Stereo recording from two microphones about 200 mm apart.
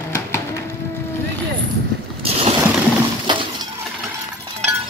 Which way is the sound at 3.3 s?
25° right (ahead or behind).